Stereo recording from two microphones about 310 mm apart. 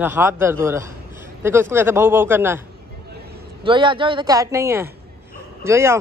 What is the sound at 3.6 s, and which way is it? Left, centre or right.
Speech, centre.